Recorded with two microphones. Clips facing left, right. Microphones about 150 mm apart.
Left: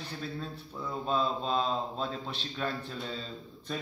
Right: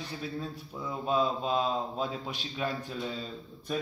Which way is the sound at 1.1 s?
10° right (ahead or behind).